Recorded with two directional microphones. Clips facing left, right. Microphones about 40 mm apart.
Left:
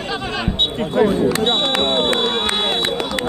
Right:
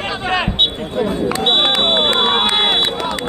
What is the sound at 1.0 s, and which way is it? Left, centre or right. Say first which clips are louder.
Speech: left 4 dB; left.